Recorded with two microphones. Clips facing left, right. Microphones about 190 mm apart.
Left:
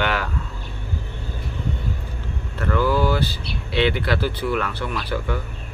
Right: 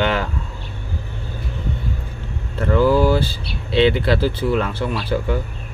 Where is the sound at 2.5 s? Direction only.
25° right (ahead or behind).